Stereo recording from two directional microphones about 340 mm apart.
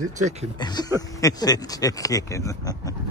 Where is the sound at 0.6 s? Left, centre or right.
Centre.